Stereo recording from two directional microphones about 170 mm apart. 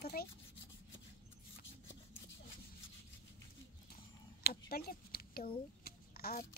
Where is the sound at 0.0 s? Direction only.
65° left (ahead or behind).